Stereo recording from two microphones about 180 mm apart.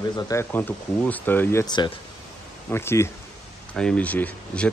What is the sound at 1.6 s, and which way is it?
Speech, 25° left (ahead or behind).